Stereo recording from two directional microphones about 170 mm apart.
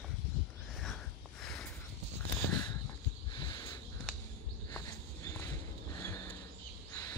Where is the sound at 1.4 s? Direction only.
5° left (ahead or behind).